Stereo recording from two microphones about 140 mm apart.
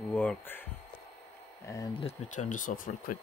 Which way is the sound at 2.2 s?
65° left (ahead or behind).